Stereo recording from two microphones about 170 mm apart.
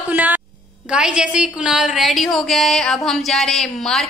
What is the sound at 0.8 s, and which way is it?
A woman's voice, 5° right (ahead or behind).